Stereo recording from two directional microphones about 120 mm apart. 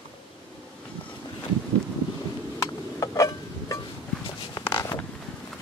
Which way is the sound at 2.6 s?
25° left (ahead or behind).